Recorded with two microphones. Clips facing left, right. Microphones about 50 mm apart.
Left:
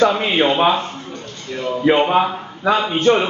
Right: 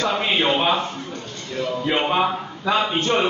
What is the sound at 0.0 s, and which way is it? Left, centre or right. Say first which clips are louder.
Speech: left 6 dB; centre.